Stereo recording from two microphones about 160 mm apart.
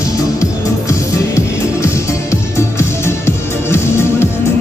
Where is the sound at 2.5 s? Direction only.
15° left (ahead or behind).